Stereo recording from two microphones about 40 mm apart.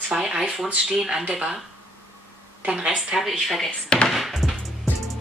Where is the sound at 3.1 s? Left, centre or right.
Centre.